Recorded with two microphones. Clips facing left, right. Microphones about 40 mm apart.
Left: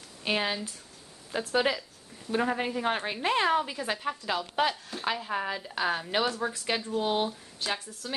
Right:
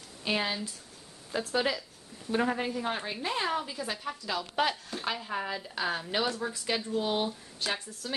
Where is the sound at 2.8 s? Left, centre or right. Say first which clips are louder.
Left 4 dB; left.